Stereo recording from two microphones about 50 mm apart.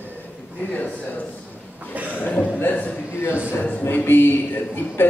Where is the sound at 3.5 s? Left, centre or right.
Left.